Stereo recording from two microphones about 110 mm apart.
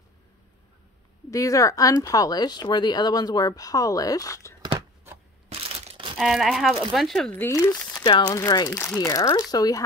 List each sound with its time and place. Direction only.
1.3 s speech: 30° left (ahead or behind)
4.6 s a sound: 35° right (ahead or behind)
5.5 s crushing: 65° right (ahead or behind)
6.1 s speech: centre (ahead or behind)
7.3 s speech: 20° left (ahead or behind)
8.4 s speech: 30° left (ahead or behind)